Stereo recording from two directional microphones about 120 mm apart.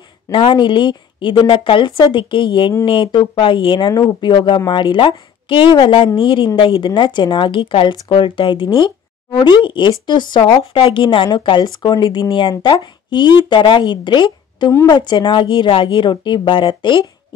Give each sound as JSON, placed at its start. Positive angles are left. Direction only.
{"t": 0.3, "sound": "a woman's voice", "side_deg": 40}